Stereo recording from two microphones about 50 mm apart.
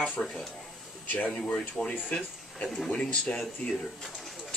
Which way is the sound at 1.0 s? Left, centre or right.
Left.